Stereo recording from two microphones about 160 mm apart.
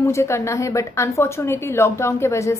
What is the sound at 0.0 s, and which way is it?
Speech, 20° left (ahead or behind).